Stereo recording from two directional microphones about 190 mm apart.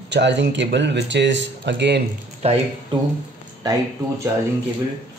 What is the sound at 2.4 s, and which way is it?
Speech, 35° right (ahead or behind).